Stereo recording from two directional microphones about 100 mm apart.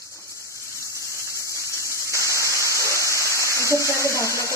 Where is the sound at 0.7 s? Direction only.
30° left (ahead or behind).